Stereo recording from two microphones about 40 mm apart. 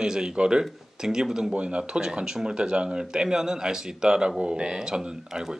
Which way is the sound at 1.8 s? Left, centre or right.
Right.